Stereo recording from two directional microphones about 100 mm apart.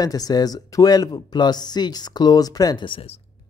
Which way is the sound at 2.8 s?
70° left (ahead or behind).